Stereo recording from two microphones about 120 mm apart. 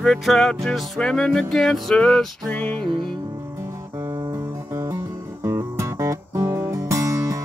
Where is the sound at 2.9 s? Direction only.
40° right (ahead or behind).